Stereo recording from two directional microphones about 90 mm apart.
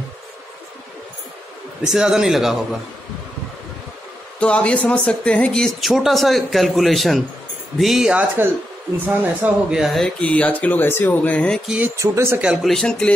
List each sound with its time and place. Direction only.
1.8 s speech: 5° right (ahead or behind)
4.4 s speech: 15° left (ahead or behind); by 8.1 s 5° right (ahead or behind)
8.1 s speech: 15° right (ahead or behind)
9.7 s speech: 5° right (ahead or behind)
10.2 s speech: 15° left (ahead or behind)
12.0 s speech: 30° right (ahead or behind)
12.6 s speech: 5° left (ahead or behind)